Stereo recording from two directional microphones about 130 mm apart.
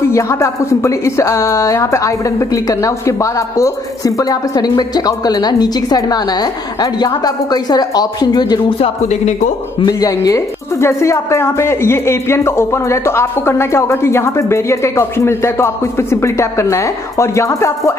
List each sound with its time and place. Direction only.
0.1 s speech: 20° left (ahead or behind)
9.0 s speech: 65° left (ahead or behind)
9.8 s speech: 30° left (ahead or behind)